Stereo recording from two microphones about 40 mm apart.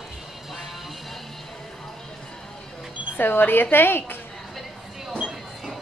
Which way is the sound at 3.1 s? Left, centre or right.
Left.